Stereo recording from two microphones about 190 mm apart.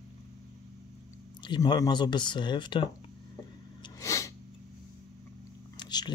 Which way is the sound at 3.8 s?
15° left (ahead or behind).